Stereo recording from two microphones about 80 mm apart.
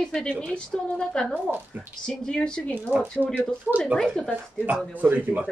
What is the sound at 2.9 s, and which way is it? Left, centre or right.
Speech, right.